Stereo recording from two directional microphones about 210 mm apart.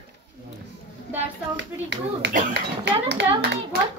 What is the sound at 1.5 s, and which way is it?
A child's voice, 55° right (ahead or behind).